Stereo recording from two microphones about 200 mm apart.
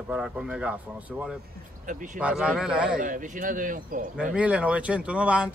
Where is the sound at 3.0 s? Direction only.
40° right (ahead or behind).